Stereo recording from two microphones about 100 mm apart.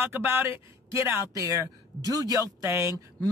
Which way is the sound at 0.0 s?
20° right (ahead or behind).